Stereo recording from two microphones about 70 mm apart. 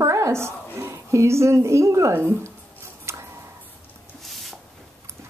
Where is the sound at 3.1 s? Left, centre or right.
Right.